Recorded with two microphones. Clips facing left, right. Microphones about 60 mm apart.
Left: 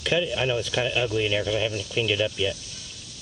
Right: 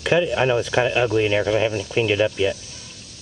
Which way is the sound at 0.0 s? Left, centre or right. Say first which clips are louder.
Right 6 dB; right.